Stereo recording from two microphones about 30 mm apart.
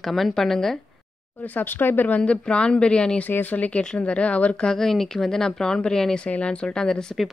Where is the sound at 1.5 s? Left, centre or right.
Left.